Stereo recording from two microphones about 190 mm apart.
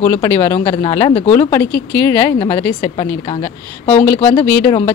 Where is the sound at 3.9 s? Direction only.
10° left (ahead or behind).